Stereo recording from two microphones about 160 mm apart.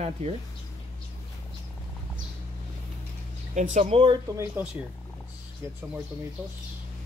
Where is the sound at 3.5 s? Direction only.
45° right (ahead or behind).